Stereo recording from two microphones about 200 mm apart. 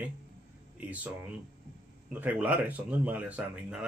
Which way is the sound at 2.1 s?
10° right (ahead or behind).